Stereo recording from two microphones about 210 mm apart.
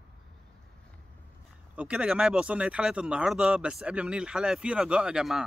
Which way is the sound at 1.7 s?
5° right (ahead or behind).